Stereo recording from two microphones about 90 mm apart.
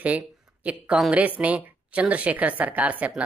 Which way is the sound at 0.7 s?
15° right (ahead or behind).